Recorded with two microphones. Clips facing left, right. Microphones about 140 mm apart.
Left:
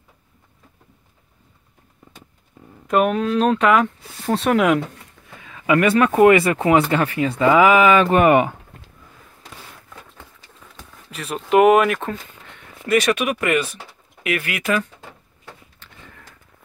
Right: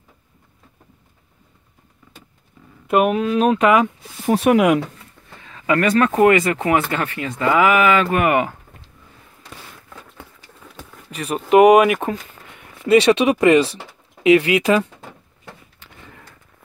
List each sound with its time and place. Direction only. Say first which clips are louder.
2.9 s speech: right 1 dB; 5° right (ahead or behind)
5.4 s speech: left 1 dB; 15° left (ahead or behind)
11.1 s speech: right 4 dB; centre (ahead or behind)
12.8 s speech: right 5 dB; 30° right (ahead or behind)